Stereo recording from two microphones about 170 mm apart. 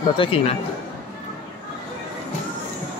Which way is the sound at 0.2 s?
35° left (ahead or behind).